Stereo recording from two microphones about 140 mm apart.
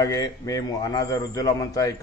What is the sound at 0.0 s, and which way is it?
A man's voice, 25° left (ahead or behind).